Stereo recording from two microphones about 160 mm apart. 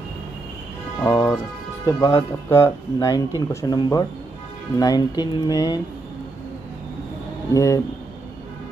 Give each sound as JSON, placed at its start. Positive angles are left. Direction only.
{"t": 1.0, "sound": "speech", "side_deg": 20}
{"t": 7.5, "sound": "speech", "side_deg": 20}